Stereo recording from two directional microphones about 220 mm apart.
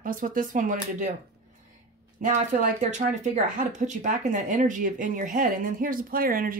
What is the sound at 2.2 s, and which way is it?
A woman's voice, 35° right (ahead or behind).